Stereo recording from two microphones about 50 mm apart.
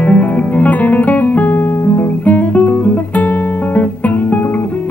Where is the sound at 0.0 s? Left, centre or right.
Left.